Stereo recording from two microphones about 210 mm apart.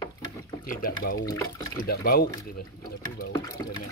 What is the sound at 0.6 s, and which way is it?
Speech, 40° left (ahead or behind).